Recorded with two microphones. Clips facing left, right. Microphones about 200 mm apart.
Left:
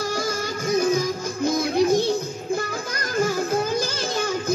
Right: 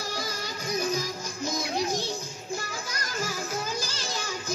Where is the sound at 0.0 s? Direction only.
50° left (ahead or behind).